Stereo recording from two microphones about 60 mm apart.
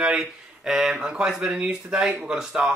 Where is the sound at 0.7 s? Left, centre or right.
Centre.